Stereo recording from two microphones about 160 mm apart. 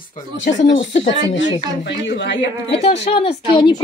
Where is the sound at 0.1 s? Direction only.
50° left (ahead or behind).